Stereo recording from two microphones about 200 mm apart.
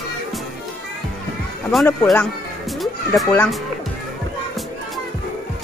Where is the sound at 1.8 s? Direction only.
10° left (ahead or behind).